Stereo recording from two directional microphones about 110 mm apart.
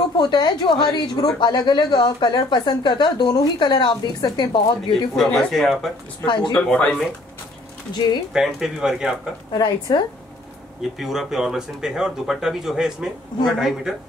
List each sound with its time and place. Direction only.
0.2 s a woman's voice: 45° left (ahead or behind)
5.1 s speech: centre (ahead or behind)
6.2 s a woman's voice: 45° left (ahead or behind)
6.7 s speech: 10° left (ahead or behind)
8.3 s speech: 5° right (ahead or behind)
9.5 s a woman's voice: 40° left (ahead or behind)
10.8 s speech: centre (ahead or behind)